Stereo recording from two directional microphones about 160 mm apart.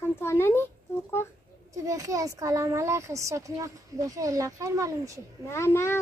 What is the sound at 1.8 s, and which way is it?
A child's voice, 20° right (ahead or behind).